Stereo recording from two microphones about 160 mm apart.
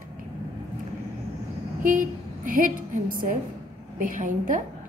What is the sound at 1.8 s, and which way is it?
A woman's voice, 55° right (ahead or behind).